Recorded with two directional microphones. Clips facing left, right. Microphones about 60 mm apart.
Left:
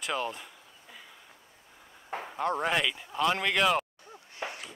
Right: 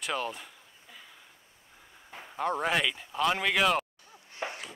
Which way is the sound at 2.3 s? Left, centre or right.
Centre.